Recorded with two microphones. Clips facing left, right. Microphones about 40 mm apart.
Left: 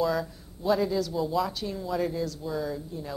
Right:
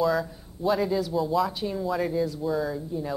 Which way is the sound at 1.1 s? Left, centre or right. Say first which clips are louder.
Right 3 dB; centre.